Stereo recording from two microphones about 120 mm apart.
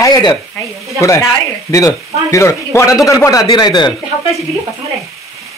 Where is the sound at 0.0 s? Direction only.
35° left (ahead or behind).